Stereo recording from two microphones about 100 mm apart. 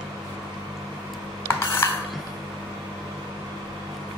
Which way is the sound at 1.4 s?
25° left (ahead or behind).